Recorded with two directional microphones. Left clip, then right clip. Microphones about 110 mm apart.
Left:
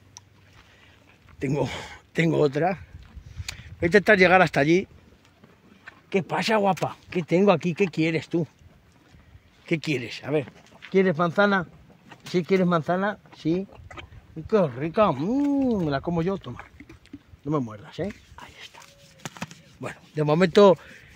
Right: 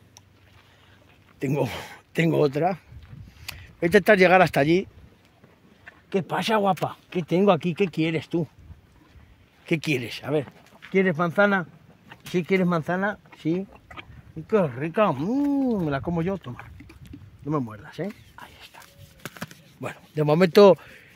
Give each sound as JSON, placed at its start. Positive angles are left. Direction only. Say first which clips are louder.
{"t": 1.4, "sound": "speech", "louder": "right 1 dB", "side_deg": -30}
{"t": 6.0, "sound": "speech", "louder": "left 1 dB", "side_deg": -15}
{"t": 9.7, "sound": "speech", "louder": "right 1 dB", "side_deg": -65}
{"t": 10.9, "sound": "speech", "louder": "left 1 dB", "side_deg": -15}
{"t": 13.7, "sound": "a sound", "louder": "even", "side_deg": 5}
{"t": 14.5, "sound": "speech", "louder": "even", "side_deg": -15}
{"t": 18.3, "sound": "dog", "louder": "left 1 dB", "side_deg": -25}
{"t": 18.8, "sound": "a sound", "louder": "even", "side_deg": 20}
{"t": 19.8, "sound": "speech", "louder": "right 1 dB", "side_deg": -40}